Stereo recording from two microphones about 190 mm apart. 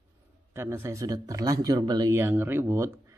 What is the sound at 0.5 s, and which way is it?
Speech, 10° right (ahead or behind).